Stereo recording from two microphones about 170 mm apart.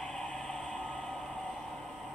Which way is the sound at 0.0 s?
5° left (ahead or behind).